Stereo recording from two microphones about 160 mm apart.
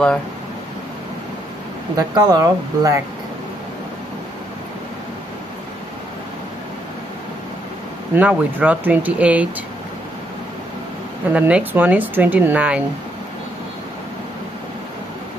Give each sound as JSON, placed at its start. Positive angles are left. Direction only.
{"t": 2.0, "sound": "speech", "side_deg": -25}
{"t": 8.1, "sound": "speech", "side_deg": -10}
{"t": 11.2, "sound": "speech", "side_deg": -10}